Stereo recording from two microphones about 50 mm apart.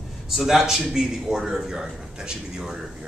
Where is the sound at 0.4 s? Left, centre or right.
Centre.